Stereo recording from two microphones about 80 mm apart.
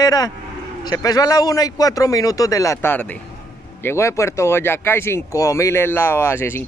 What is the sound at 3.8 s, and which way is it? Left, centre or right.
Speech, left.